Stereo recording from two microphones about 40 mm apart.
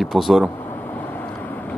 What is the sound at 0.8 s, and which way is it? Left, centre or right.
Vehicle, left.